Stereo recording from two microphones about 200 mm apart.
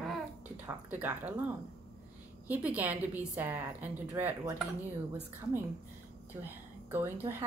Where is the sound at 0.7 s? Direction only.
10° right (ahead or behind).